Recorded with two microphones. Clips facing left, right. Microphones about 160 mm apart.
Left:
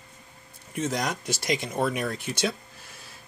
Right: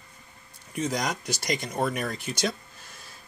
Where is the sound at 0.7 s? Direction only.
5° left (ahead or behind).